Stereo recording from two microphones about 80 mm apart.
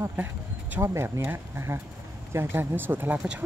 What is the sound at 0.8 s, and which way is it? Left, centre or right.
Speech, right.